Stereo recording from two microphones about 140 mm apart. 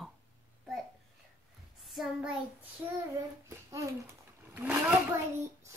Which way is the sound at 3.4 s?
20° right (ahead or behind).